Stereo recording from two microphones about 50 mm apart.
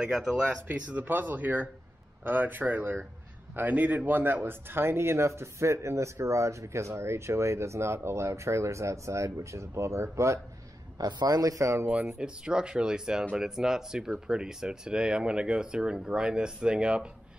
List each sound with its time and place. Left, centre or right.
0.0 s speech: centre
0.7 s speech: right
11.5 s speech: right
11.9 s speech: right